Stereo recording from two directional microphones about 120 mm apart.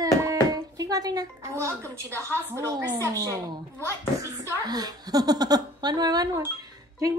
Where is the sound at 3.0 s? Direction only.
30° right (ahead or behind).